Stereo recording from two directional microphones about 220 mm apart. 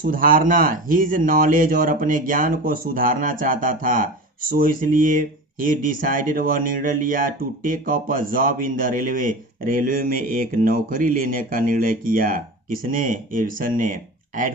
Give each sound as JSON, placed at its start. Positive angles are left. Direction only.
{"t": 0.0, "sound": "speech", "side_deg": -40}